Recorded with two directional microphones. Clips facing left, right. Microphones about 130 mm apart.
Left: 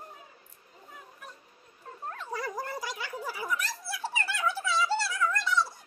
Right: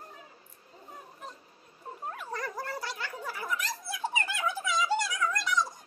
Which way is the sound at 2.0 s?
10° right (ahead or behind).